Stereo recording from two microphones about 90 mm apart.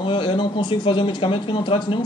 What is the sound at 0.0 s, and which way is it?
Speech, 70° left (ahead or behind).